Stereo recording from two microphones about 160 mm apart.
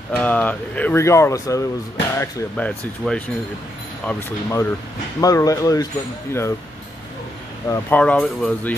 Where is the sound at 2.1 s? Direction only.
10° left (ahead or behind).